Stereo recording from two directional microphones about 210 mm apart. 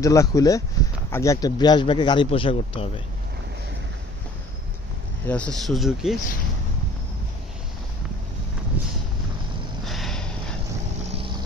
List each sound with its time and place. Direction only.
0.0 s speech: 15° left (ahead or behind)
5.2 s speech: 5° left (ahead or behind)
9.8 s a sound: centre (ahead or behind)
11.0 s vehicle: 25° right (ahead or behind)